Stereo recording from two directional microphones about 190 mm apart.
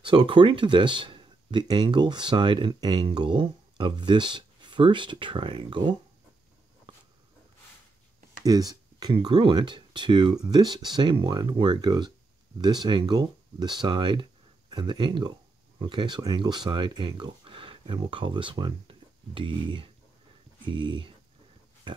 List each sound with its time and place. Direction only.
0.0 s speech: 25° right (ahead or behind)
6.9 s a sound: 25° right (ahead or behind)
8.5 s speech: 20° right (ahead or behind)
21.9 s pig: 25° right (ahead or behind)